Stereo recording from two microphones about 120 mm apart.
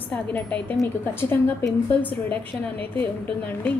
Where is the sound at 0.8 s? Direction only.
20° left (ahead or behind).